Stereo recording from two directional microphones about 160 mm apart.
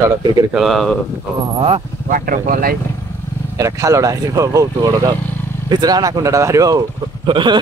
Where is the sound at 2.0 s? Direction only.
60° right (ahead or behind).